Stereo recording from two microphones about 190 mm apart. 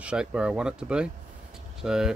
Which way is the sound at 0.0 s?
5° right (ahead or behind).